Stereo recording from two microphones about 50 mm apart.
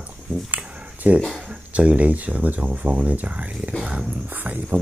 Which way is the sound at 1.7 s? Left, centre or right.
Right.